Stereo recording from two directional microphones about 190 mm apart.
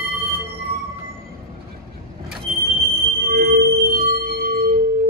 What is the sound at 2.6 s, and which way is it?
Music, 50° right (ahead or behind).